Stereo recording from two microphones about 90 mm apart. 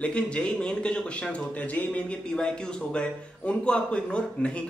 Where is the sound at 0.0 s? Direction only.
10° left (ahead or behind).